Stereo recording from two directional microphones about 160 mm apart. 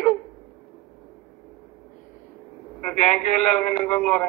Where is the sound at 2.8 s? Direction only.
Centre (ahead or behind).